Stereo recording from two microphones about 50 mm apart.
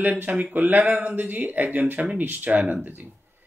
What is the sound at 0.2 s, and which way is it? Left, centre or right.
Speech, right.